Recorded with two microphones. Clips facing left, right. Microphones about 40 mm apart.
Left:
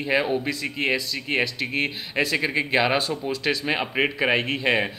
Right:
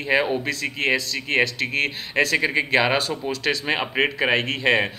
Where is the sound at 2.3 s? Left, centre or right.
Centre.